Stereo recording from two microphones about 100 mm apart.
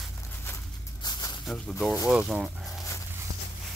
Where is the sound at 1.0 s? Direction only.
45° left (ahead or behind).